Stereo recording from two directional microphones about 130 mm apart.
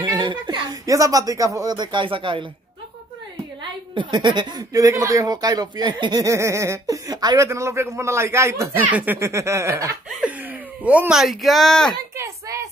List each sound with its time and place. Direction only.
0.1 s a woman's voice: 35° right (ahead or behind)
3.9 s speech: 35° right (ahead or behind)
6.2 s speech: 20° right (ahead or behind)
10.0 s a sound: 10° right (ahead or behind)